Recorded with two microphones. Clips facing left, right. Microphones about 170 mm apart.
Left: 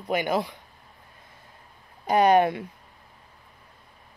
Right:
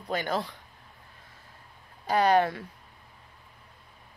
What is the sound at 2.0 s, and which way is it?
Speech, 20° left (ahead or behind).